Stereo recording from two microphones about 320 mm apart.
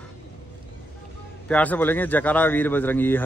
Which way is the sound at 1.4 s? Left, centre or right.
Centre.